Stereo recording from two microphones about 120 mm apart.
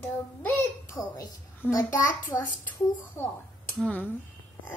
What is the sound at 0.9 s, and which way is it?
A child's voice, 30° left (ahead or behind).